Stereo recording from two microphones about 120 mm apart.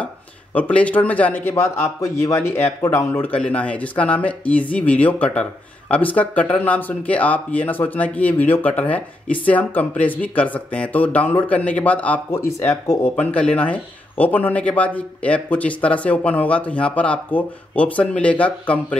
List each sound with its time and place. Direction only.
0.6 s speech: 10° left (ahead or behind)
12.4 s speech: 25° left (ahead or behind)
13.1 s speech: 10° left (ahead or behind)